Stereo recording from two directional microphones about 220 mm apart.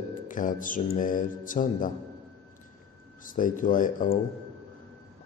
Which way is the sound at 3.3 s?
35° left (ahead or behind).